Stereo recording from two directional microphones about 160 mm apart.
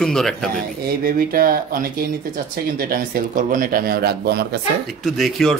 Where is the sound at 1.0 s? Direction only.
65° right (ahead or behind); by 4.6 s 85° right.